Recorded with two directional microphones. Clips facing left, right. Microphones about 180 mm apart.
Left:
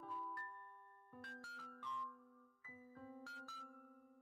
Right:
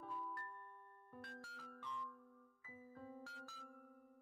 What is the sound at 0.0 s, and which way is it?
Music, 30° right (ahead or behind).